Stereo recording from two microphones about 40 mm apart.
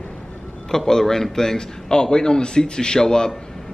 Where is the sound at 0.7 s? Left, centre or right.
Centre.